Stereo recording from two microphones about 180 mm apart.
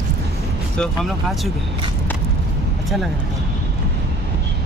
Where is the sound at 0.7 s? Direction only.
5° left (ahead or behind).